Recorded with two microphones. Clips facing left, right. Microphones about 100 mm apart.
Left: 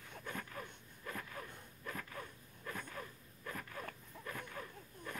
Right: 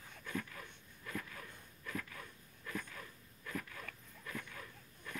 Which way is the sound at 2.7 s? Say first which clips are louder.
Even; 25° left (ahead or behind).